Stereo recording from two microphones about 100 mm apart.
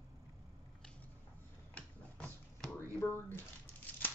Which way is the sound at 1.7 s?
15° left (ahead or behind).